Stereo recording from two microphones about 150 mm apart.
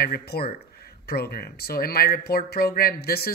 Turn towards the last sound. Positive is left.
turn(degrees=90)